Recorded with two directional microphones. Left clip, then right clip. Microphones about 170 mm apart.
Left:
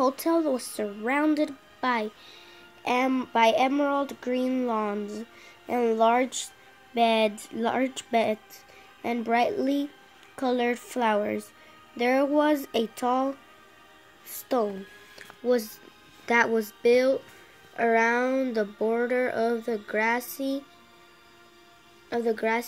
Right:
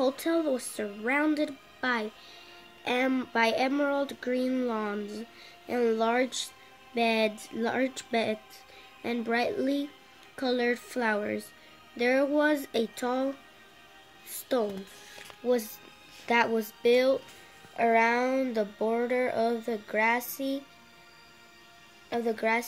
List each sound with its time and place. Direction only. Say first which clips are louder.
0.0 s speech: left 3 dB; 15° left (ahead or behind)
14.3 s music: left 2 dB; 15° left (ahead or behind)
15.4 s speech: left 3 dB; 10° left (ahead or behind)
22.1 s speech: left 2 dB; 10° left (ahead or behind)